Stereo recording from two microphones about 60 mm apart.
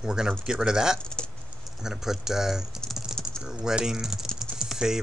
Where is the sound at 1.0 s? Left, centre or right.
Centre.